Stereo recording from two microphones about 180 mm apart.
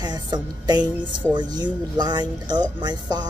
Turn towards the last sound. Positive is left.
turn(degrees=-25)  # may be behind; listen again after turning